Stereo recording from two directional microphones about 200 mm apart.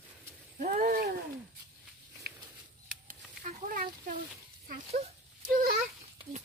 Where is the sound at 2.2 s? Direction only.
50° right (ahead or behind).